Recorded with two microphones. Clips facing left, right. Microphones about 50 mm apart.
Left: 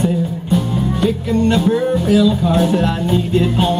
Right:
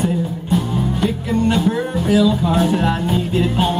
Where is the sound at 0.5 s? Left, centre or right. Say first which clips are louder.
Left 1 dB; centre.